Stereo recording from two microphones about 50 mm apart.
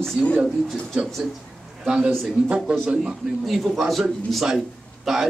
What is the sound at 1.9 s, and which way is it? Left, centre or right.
A man's voice, centre.